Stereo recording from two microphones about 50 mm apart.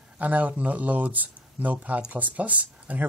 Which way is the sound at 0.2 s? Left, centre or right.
Right.